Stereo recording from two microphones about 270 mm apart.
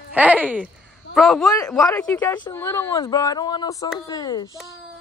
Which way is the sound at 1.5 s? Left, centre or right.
Centre.